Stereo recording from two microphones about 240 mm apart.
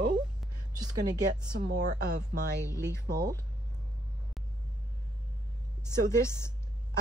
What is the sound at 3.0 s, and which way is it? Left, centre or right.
Speech, right.